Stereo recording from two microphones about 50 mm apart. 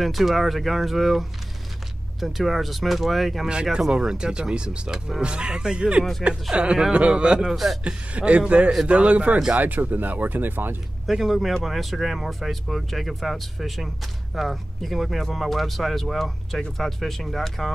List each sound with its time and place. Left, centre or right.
0.0 s speech: centre
3.9 s a man's voice: centre
7.4 s speech: centre
7.8 s a man's voice: right
11.1 s speech: centre